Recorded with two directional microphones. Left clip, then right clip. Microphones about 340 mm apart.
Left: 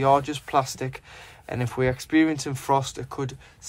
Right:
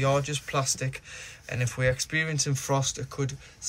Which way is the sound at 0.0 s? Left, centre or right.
Centre.